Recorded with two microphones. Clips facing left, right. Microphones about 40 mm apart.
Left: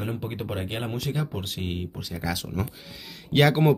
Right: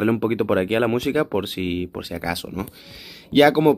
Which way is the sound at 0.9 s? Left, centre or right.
Right.